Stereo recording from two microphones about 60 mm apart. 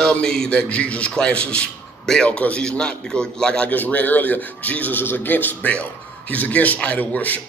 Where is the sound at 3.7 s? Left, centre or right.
Left.